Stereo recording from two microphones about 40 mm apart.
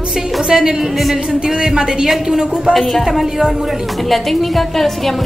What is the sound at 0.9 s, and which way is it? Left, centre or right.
Speech, centre.